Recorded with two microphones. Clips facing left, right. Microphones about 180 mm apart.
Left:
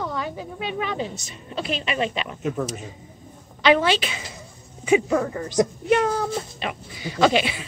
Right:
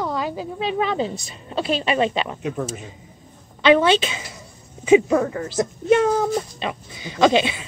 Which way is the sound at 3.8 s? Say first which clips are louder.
Right 4 dB; 25° right (ahead or behind).